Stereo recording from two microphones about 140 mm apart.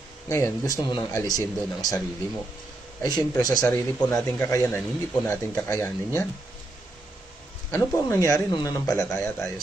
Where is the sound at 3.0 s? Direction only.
25° left (ahead or behind).